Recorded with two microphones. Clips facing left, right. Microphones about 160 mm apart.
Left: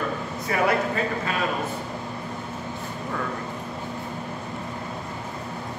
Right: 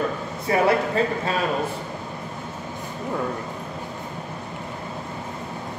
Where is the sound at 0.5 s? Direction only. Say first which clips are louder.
Right 3 dB; 30° right (ahead or behind).